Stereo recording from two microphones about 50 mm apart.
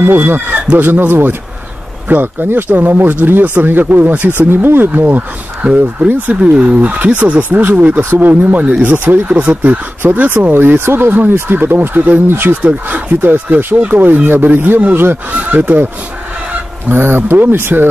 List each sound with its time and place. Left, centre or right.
0.0 s speech: right
5.6 s speech: right
16.9 s speech: right